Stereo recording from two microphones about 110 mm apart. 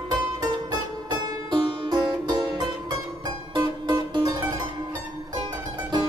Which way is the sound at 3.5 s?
40° right (ahead or behind).